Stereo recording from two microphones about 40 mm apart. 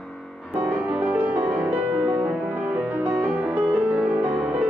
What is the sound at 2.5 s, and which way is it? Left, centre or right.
Music, right.